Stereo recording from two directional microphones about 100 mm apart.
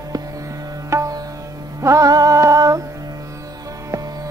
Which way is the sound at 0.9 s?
30° right (ahead or behind).